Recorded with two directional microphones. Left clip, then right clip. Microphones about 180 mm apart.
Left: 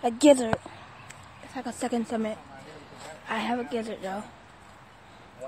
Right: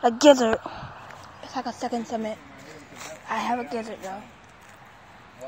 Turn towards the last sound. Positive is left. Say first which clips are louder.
# even
turn(degrees=20)  # may be behind; listen again after turning